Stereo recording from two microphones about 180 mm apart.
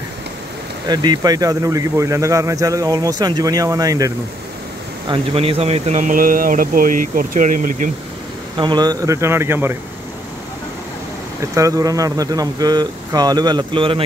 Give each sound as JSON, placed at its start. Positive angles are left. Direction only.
{"t": 0.8, "sound": "speech", "side_deg": -20}
{"t": 5.0, "sound": "speech", "side_deg": -30}
{"t": 8.5, "sound": "speech", "side_deg": -25}
{"t": 11.5, "sound": "speech", "side_deg": -20}